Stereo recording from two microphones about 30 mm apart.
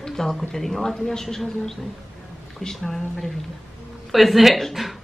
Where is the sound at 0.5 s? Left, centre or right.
Centre.